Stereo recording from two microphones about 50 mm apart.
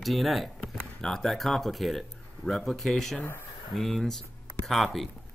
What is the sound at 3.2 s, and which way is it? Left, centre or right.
Speech, left.